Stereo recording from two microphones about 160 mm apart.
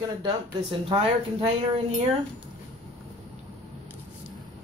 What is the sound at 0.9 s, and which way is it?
Speech, 30° right (ahead or behind).